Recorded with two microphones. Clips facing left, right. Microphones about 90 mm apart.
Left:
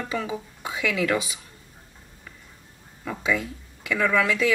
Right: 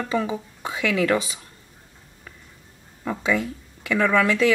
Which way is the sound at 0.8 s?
10° left (ahead or behind).